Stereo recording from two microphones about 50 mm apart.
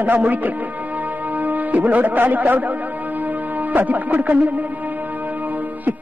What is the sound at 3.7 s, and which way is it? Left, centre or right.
Speech, right.